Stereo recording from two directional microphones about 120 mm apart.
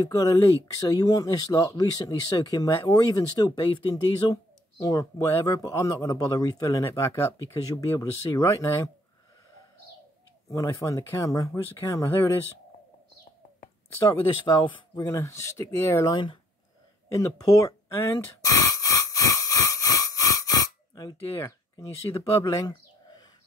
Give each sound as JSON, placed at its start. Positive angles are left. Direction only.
{"t": 0.0, "sound": "speech", "side_deg": 30}
{"t": 10.5, "sound": "speech", "side_deg": 25}
{"t": 14.4, "sound": "speech", "side_deg": 40}
{"t": 15.0, "sound": "speech", "side_deg": 20}
{"t": 17.1, "sound": "a sound", "side_deg": 30}